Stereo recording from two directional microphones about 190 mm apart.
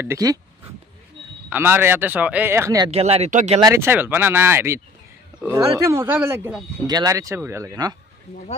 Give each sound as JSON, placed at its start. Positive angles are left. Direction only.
{"t": 0.0, "sound": "speech", "side_deg": -15}
{"t": 1.5, "sound": "speech", "side_deg": -10}
{"t": 2.9, "sound": "speech", "side_deg": -35}
{"t": 3.5, "sound": "speech", "side_deg": -15}